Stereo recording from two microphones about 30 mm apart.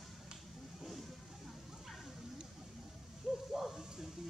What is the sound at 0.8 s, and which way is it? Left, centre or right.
Vehicle, centre.